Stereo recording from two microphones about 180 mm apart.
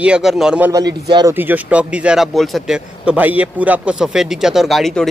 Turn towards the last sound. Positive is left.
turn(degrees=0)  # may be behind; listen again after turning